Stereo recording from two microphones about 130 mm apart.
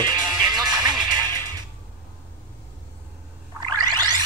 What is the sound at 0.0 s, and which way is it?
Music, 35° right (ahead or behind).